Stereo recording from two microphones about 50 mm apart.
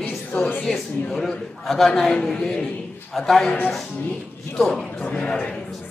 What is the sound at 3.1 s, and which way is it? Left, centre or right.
Speech, centre.